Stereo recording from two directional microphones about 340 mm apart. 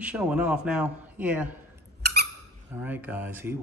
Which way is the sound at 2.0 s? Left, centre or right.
Right.